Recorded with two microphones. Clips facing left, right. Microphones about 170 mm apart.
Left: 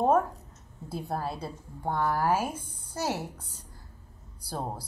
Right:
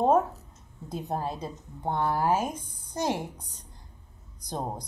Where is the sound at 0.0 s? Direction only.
20° right (ahead or behind).